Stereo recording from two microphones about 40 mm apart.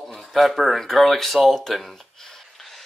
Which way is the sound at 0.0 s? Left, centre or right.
Centre.